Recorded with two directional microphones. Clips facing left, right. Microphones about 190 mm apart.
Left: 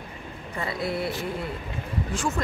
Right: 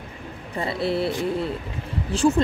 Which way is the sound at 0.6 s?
30° right (ahead or behind).